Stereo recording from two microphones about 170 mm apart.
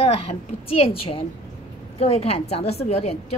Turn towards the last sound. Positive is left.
turn(degrees=40)  # may be behind; listen again after turning